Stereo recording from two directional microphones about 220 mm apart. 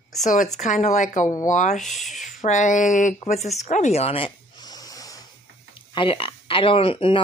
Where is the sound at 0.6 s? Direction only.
35° left (ahead or behind).